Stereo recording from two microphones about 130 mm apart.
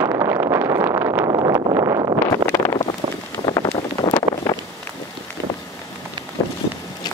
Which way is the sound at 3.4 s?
35° left (ahead or behind).